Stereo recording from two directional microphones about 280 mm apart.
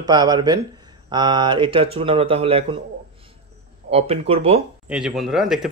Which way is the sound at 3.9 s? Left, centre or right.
Right.